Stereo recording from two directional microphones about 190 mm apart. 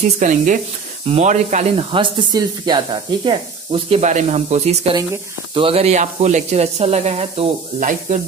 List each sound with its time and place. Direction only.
0.2 s speech: 40° right (ahead or behind)
4.0 s speech: 40° right (ahead or behind)